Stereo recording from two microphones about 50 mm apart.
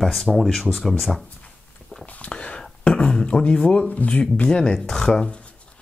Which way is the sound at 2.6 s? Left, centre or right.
Centre.